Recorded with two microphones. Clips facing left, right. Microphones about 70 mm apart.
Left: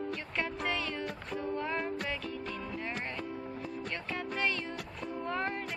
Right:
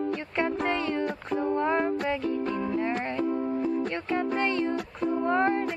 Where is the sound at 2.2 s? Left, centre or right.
Right.